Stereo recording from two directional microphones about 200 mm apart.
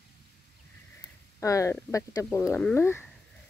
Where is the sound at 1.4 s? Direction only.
15° left (ahead or behind).